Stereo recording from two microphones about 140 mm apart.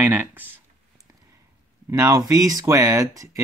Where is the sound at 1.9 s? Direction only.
20° right (ahead or behind).